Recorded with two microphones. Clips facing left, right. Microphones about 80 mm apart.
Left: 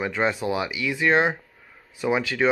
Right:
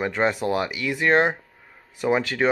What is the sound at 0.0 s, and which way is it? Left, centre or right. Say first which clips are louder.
Speech: right 2 dB; right.